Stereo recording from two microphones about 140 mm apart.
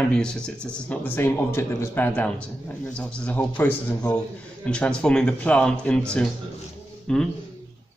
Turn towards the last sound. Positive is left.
turn(degrees=5)  # may be behind; listen again after turning